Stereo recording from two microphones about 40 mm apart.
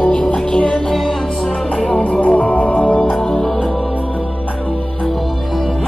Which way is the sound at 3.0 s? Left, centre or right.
Centre.